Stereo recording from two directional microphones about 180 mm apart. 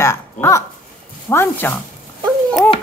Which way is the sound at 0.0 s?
15° left (ahead or behind).